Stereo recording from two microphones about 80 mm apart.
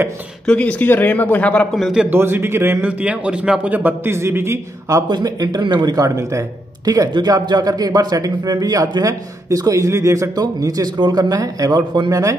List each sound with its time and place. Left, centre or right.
0.5 s speech: centre
1.8 s a man's voice: centre
2.0 s a man's voice: right
2.8 s a man's voice: centre; by 5.0 s right
5.0 s speech: right
5.6 s speech: right
5.9 s a man's voice: right
12.1 s a man's voice: right